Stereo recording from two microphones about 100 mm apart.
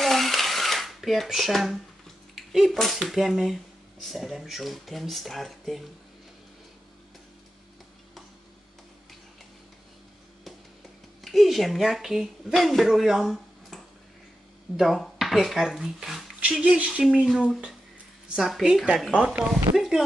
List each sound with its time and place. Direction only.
0.0 s a sound: centre (ahead or behind)
2.3 s speech: centre (ahead or behind)
11.2 s a woman's voice: centre (ahead or behind)
19.7 s speech: 55° right (ahead or behind)